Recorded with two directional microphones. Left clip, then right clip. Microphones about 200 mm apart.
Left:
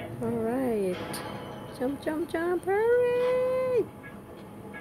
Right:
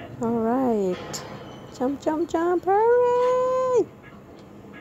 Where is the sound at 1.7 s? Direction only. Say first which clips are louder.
Right 6 dB; 10° right (ahead or behind).